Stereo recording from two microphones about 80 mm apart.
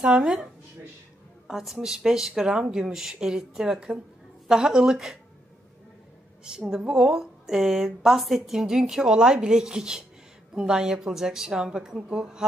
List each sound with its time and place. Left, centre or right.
0.0 s a woman's voice: centre
1.5 s a woman's voice: centre
6.4 s a woman's voice: centre